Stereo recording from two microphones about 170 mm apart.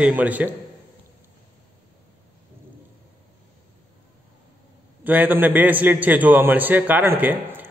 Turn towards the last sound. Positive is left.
turn(degrees=-10)  # may be behind; listen again after turning